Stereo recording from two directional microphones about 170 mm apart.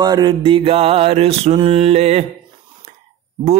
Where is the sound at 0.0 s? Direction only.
25° right (ahead or behind).